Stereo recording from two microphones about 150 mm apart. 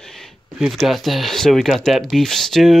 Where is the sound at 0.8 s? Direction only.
Centre (ahead or behind).